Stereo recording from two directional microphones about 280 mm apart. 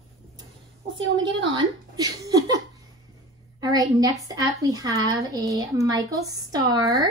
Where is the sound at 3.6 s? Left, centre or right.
Centre.